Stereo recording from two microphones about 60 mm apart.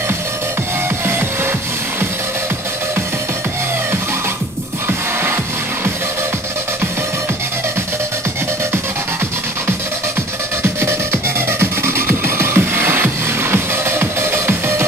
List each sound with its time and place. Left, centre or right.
4.8 s music: right
10.6 s music: right